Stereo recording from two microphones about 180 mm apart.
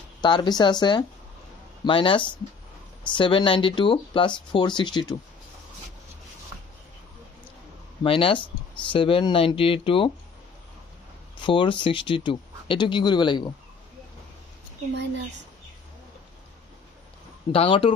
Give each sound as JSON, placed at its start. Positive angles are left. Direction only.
{"t": 0.2, "sound": "speech", "side_deg": 25}
{"t": 8.0, "sound": "speech", "side_deg": 30}
{"t": 11.4, "sound": "speech", "side_deg": 25}
{"t": 17.5, "sound": "speech", "side_deg": 30}